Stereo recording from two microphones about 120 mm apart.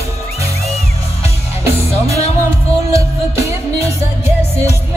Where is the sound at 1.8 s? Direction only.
60° left (ahead or behind).